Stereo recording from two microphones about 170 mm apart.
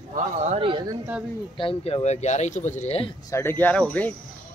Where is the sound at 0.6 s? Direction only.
30° right (ahead or behind).